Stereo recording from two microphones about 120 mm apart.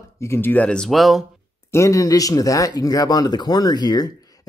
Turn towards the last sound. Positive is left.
turn(degrees=35)  # may be behind; listen again after turning